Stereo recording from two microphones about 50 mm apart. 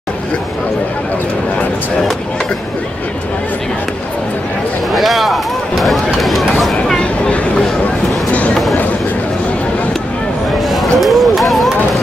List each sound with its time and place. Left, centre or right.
4.9 s speech: centre
7.0 s a sound: left
10.7 s run: centre